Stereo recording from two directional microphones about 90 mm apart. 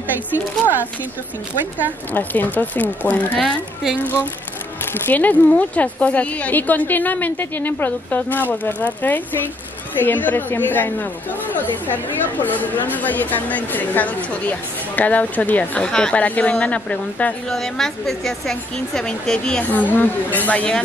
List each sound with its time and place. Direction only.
2.1 s speech: 20° left (ahead or behind)
17.5 s a woman's voice: 5° left (ahead or behind)
19.6 s speech: 20° left (ahead or behind)